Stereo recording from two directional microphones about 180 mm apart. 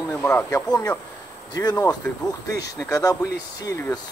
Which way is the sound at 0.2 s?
10° left (ahead or behind).